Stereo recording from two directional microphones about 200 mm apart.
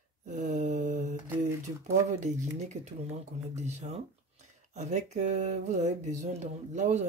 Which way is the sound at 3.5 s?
35° right (ahead or behind).